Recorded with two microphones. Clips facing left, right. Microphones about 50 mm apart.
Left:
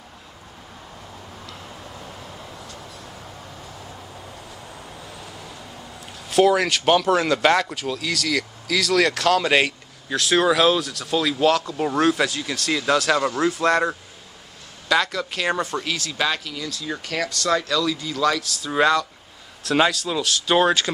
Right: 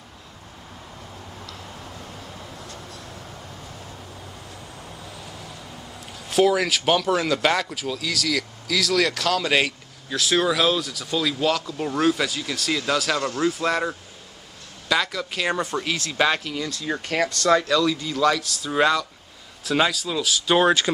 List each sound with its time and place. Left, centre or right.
5.1 s vehicle: centre
6.2 s speech: centre
14.9 s speech: centre
16.1 s speech: centre